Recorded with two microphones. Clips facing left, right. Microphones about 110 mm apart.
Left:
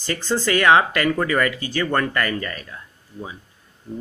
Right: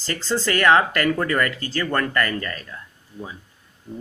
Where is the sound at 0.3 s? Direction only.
15° left (ahead or behind).